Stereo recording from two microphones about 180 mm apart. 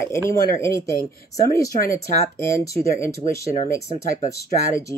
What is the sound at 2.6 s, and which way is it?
Speech, 15° left (ahead or behind).